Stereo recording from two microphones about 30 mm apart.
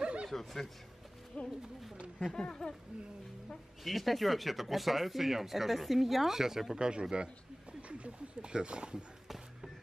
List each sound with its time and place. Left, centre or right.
0.0 s chuckle: right
0.3 s speech: centre
1.3 s speech: left
2.3 s speech: centre
3.8 s speech: centre
6.7 s a man's voice: right